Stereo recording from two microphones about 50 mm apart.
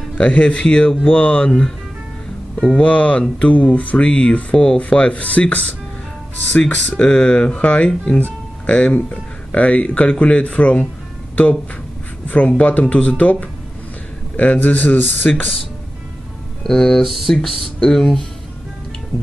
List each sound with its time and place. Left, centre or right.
0.2 s speech: left
2.7 s speech: left
6.5 s speech: centre
12.3 s speech: left
16.6 s speech: centre